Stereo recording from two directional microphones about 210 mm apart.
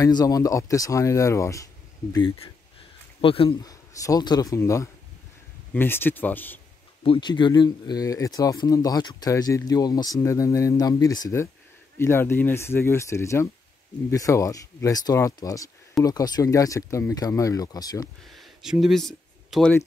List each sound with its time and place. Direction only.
0.0 s speech: 15° left (ahead or behind)
3.2 s speech: 25° left (ahead or behind); by 6.6 s 10° left (ahead or behind)
7.0 s speech: 25° left (ahead or behind)
18.3 s a sound: centre (ahead or behind)